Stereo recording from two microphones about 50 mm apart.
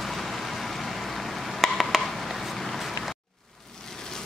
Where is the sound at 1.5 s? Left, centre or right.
Centre.